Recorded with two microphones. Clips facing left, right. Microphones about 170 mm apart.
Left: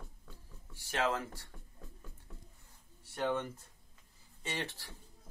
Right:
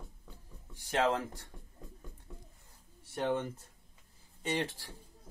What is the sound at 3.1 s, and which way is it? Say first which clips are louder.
Speech: right 2 dB; 30° right (ahead or behind).